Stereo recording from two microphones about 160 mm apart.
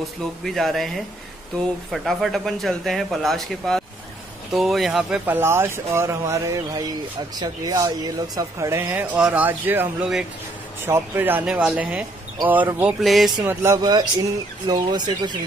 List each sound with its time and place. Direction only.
0.0 s speech: centre (ahead or behind)
13.0 s speech: centre (ahead or behind)
13.5 s speech: 15° right (ahead or behind)